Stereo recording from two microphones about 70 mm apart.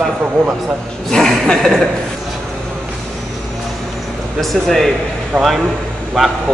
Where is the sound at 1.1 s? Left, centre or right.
Centre.